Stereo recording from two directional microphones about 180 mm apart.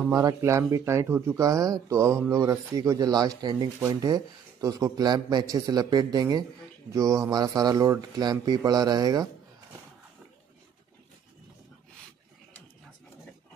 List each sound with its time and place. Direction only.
0.1 s speech: 20° right (ahead or behind)